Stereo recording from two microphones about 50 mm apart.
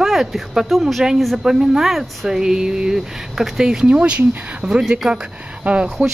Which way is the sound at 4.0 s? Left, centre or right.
Right.